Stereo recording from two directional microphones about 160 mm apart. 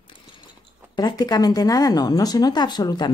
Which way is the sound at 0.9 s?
25° left (ahead or behind).